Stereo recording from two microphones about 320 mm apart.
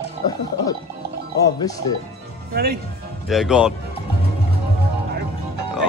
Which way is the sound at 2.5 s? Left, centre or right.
Right.